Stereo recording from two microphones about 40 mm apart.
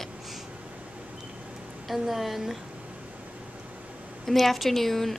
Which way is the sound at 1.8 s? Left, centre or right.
Centre.